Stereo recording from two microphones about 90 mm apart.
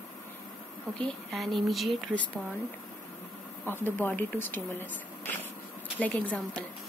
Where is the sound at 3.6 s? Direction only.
25° left (ahead or behind).